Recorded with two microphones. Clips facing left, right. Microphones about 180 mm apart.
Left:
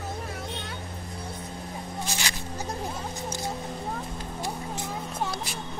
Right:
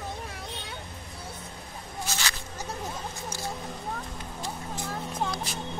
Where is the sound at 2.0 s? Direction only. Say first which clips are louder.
Right 1 dB; 15° left (ahead or behind).